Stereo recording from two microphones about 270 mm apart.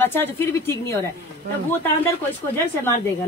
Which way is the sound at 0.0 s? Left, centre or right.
Centre.